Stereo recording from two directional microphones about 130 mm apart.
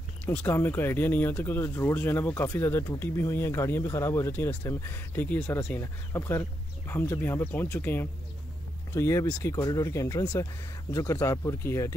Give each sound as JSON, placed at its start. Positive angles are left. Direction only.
{"t": 0.2, "sound": "speech", "side_deg": 10}